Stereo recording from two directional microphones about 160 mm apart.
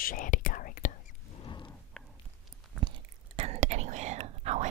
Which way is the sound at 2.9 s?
30° right (ahead or behind).